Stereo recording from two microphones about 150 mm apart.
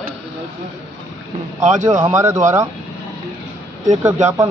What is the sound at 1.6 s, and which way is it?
Speech, 55° right (ahead or behind).